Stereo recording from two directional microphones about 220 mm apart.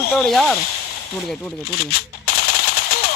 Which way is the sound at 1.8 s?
45° left (ahead or behind).